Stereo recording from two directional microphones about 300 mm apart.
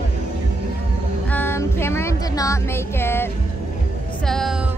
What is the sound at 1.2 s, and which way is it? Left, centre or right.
Music, centre.